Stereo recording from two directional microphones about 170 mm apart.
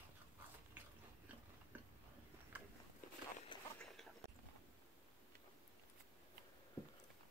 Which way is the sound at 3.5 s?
25° left (ahead or behind).